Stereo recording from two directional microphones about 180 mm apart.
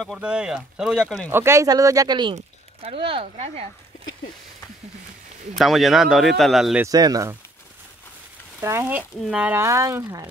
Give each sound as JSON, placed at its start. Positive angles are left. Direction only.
{"t": 0.0, "sound": "speech", "side_deg": -5}
{"t": 1.3, "sound": "speech", "side_deg": -15}
{"t": 5.6, "sound": "speech", "side_deg": 0}
{"t": 6.8, "sound": "speech", "side_deg": -20}
{"t": 8.5, "sound": "speech", "side_deg": -15}